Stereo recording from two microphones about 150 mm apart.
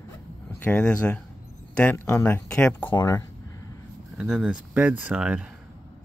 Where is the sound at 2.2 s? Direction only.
10° left (ahead or behind).